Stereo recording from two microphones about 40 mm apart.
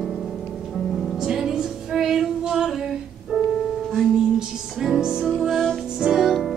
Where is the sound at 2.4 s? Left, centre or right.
Centre.